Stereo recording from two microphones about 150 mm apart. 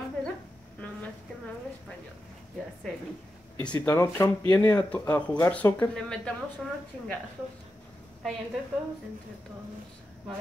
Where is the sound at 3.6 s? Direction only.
10° left (ahead or behind).